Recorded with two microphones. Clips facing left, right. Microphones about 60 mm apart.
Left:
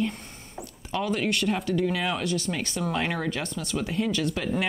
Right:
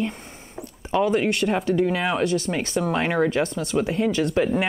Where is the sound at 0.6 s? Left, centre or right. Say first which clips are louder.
Right 7 dB; right.